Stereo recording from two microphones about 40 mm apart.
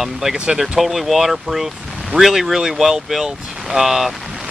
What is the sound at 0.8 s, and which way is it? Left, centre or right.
Speech, centre.